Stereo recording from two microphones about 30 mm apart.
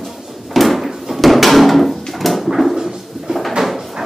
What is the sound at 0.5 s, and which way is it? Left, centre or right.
Drawer open or close, centre.